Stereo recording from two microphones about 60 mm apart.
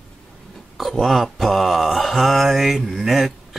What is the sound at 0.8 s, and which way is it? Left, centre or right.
Mantra, centre.